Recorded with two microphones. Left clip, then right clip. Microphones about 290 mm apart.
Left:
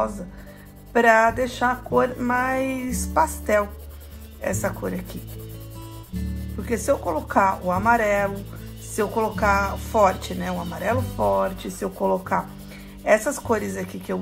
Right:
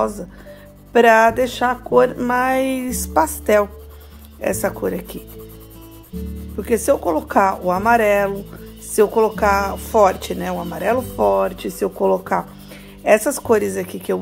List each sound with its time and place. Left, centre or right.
0.9 s speech: right
6.6 s speech: right